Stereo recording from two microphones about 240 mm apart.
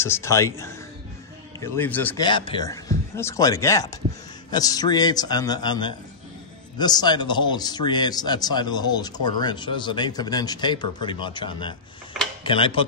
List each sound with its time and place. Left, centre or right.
0.0 s a man's voice: centre
2.2 s a man's voice: centre